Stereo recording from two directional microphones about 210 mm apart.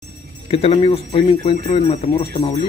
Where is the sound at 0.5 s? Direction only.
25° left (ahead or behind).